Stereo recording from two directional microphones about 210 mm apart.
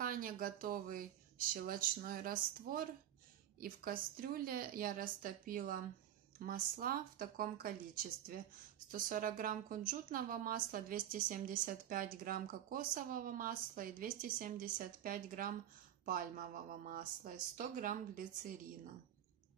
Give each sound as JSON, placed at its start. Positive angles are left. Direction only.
{"t": 0.0, "sound": "a woman's voice", "side_deg": -40}